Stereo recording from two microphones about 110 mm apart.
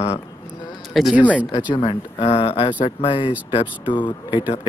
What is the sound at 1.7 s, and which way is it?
Speech, 50° left (ahead or behind).